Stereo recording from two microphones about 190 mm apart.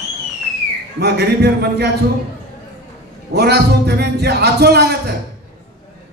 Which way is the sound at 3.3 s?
60° right (ahead or behind).